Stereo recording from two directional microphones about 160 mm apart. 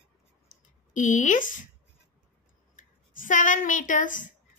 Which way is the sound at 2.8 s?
55° left (ahead or behind).